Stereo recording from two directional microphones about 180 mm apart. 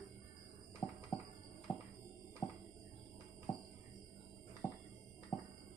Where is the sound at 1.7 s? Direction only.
5° left (ahead or behind).